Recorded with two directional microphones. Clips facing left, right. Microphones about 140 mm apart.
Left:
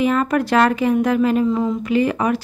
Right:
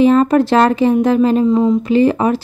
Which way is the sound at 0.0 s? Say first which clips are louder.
Right 7 dB; 30° right (ahead or behind).